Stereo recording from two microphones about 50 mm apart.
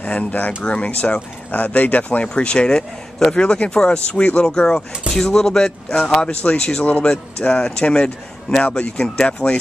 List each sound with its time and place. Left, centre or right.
0.0 s speech: left
2.2 s a man's voice: centre
6.8 s a man's voice: left